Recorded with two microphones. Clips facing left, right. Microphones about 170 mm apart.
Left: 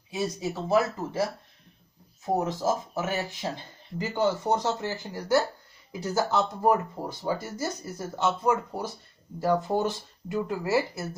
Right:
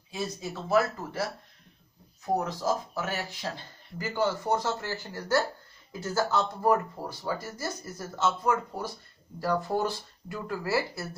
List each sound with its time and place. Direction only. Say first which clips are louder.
0.1 s speech: left 4 dB; 20° left (ahead or behind)
2.2 s speech: left 2 dB; 20° left (ahead or behind)